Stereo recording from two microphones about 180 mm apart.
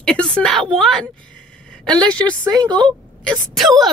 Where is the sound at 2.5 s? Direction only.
25° right (ahead or behind).